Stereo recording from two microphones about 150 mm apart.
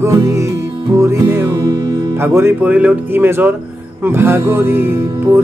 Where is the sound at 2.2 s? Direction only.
15° right (ahead or behind).